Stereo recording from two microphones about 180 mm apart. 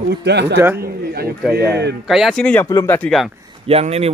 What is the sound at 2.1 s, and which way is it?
Speech, centre (ahead or behind).